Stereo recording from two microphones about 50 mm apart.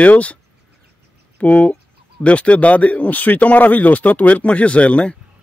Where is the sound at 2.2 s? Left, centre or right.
Left.